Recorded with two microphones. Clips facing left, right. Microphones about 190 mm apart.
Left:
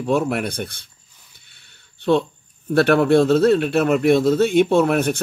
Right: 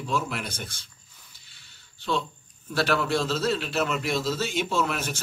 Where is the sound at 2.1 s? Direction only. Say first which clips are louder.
Left 11 dB; 55° left (ahead or behind).